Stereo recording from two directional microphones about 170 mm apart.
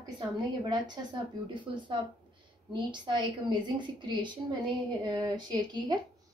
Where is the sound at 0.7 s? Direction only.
25° right (ahead or behind).